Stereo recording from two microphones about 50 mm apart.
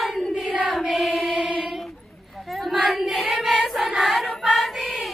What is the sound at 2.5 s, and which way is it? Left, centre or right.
Choir, centre.